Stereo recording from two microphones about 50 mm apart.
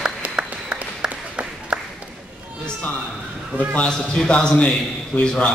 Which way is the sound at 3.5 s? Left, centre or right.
Right.